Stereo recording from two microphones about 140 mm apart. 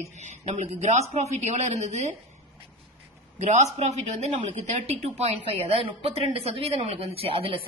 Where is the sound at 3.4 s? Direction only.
55° right (ahead or behind).